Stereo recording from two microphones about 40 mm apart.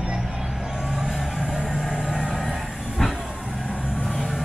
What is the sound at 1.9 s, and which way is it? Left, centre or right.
Train, right.